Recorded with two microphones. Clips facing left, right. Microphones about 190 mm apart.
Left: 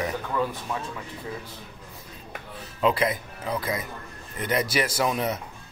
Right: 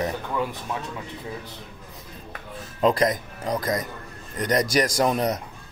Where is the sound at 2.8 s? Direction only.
45° right (ahead or behind).